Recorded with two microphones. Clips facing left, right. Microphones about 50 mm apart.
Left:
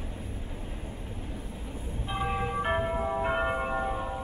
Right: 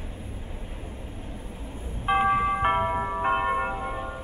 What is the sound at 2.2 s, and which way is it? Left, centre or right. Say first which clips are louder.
Music: right 4 dB; right.